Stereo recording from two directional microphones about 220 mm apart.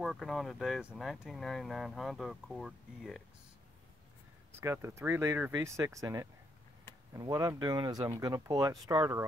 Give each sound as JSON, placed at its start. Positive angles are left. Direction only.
{"t": 0.0, "sound": "speech", "side_deg": 0}
{"t": 4.6, "sound": "speech", "side_deg": -10}